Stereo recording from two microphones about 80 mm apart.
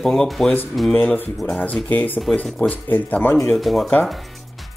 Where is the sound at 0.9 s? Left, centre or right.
Left.